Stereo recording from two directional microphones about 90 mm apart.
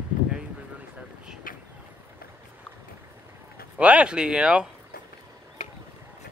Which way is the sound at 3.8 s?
15° right (ahead or behind).